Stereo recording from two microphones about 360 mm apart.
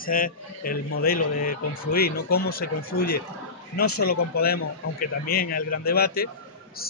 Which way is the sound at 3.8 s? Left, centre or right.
Left.